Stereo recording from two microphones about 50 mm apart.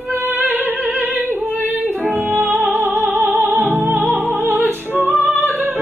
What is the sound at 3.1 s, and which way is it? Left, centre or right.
Music, right.